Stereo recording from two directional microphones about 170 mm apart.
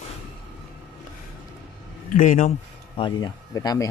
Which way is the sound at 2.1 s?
50° left (ahead or behind).